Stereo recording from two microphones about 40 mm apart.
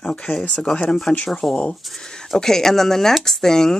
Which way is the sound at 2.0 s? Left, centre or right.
Centre.